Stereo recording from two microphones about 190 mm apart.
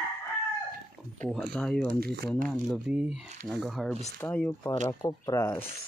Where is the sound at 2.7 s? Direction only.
5° right (ahead or behind); by 5.7 s 15° left (ahead or behind).